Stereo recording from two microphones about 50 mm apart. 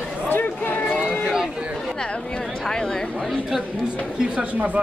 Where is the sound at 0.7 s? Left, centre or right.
Left.